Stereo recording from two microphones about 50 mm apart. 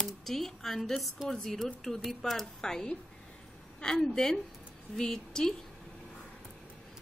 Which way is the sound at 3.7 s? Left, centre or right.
Centre.